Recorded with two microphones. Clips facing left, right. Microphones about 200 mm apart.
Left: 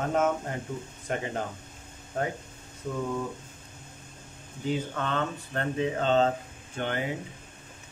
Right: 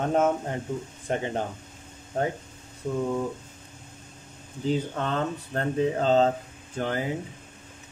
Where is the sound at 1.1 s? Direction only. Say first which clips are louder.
Right 3 dB; 30° right (ahead or behind).